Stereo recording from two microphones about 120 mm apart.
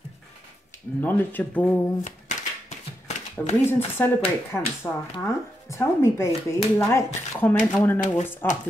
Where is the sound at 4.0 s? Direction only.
10° left (ahead or behind).